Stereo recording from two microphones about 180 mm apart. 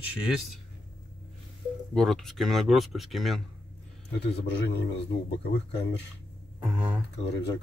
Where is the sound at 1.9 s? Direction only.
Centre (ahead or behind).